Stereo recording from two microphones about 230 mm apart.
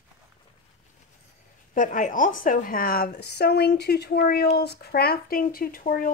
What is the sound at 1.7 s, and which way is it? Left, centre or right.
A woman's voice, left.